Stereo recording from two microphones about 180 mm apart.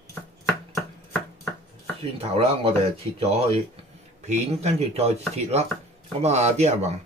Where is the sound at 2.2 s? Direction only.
30° right (ahead or behind).